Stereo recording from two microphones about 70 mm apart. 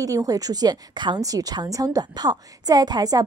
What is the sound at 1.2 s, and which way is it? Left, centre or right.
A woman's voice, right.